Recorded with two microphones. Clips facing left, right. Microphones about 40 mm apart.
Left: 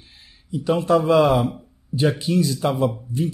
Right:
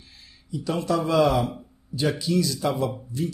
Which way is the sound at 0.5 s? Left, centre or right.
Left.